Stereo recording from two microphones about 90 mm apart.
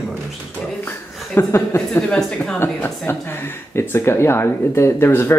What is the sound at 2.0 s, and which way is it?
Speech, 10° left (ahead or behind).